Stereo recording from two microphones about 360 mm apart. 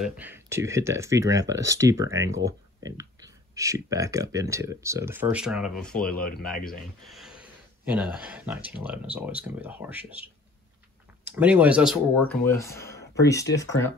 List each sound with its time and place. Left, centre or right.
0.0 s speech: centre
6.5 s speech: left
7.1 s a sound: centre
8.6 s speech: centre
11.3 s speech: centre